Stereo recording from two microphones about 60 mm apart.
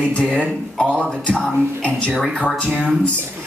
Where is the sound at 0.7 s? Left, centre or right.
Centre.